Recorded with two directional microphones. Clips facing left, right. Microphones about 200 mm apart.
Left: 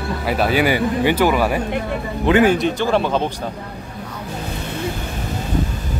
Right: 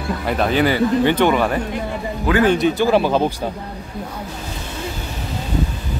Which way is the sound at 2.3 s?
25° left (ahead or behind).